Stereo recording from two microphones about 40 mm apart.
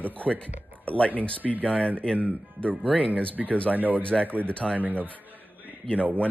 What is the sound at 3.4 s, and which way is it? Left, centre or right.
Speech, left.